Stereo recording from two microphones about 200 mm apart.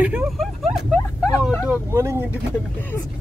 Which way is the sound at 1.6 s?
15° right (ahead or behind).